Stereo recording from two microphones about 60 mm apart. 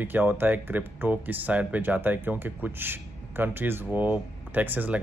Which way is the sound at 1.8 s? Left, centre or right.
Right.